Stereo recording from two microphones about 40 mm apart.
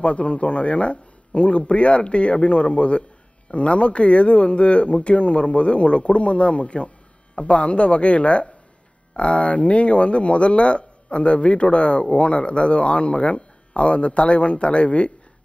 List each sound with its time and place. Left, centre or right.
0.0 s a man's voice: left